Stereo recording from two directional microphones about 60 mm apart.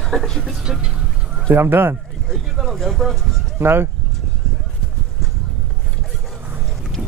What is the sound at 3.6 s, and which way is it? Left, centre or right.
Speech, right.